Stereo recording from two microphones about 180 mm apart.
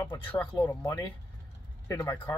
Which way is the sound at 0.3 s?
10° left (ahead or behind).